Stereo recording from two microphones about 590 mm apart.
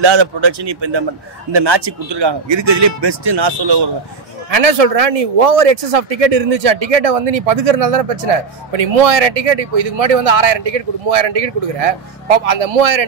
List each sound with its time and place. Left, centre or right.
0.0 s speech: right
4.5 s speech: right